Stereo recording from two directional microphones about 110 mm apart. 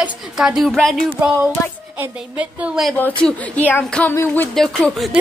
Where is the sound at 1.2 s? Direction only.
25° right (ahead or behind).